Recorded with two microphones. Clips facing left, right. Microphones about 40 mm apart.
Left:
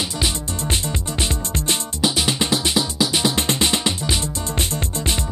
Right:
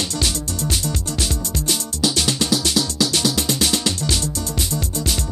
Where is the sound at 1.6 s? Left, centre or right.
Left.